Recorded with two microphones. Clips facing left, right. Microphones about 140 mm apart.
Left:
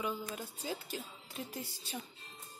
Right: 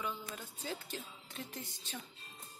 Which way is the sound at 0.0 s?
10° left (ahead or behind).